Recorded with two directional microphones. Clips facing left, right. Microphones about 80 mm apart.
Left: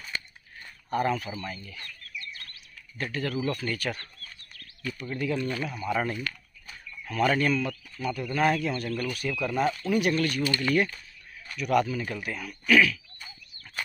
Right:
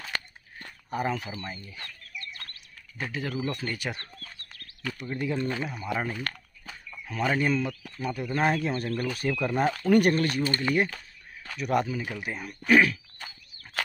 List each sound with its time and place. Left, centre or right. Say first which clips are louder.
0.0 s a sound: right 2 dB; right
0.8 s speech: left 3 dB; centre
3.0 s speech: left 1 dB; centre
5.9 s speech: left 3 dB; centre
6.7 s chicken: left 1 dB; centre
8.0 s speech: left 1 dB; right
9.8 s speech: right 5 dB; right
10.1 s speech: even; right
12.0 s speech: left 1 dB; centre
12.3 s speech: right 2 dB; right